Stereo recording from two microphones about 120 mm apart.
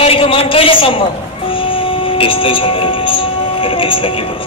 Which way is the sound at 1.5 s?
45° left (ahead or behind).